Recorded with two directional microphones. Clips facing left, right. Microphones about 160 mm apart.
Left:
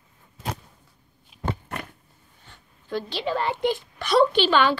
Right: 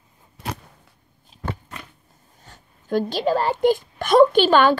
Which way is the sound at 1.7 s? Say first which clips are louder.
Left 5 dB; 60° left (ahead or behind).